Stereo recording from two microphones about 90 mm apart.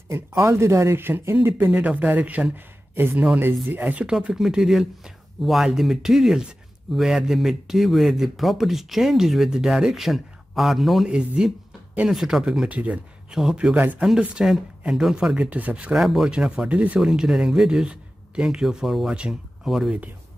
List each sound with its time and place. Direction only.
0.1 s a man's voice: 35° right (ahead or behind); by 13.7 s 5° right (ahead or behind)
13.7 s a man's voice: 20° right (ahead or behind); by 20.0 s 5° right (ahead or behind)